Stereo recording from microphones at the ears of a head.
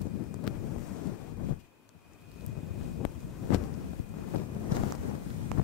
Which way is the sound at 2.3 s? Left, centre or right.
Left.